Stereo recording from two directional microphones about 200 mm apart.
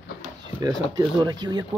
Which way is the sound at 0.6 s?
20° right (ahead or behind).